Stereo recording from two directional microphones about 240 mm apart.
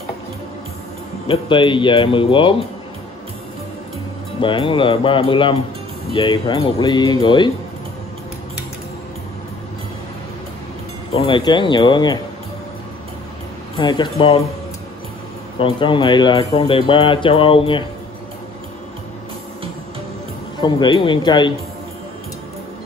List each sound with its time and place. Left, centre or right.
1.2 s speech: left
4.4 s speech: left
11.1 s speech: centre
13.7 s speech: centre
15.6 s speech: left
20.6 s speech: centre